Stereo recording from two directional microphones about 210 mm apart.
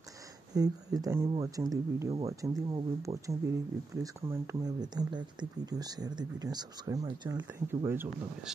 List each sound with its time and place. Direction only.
0.6 s speech: 15° right (ahead or behind)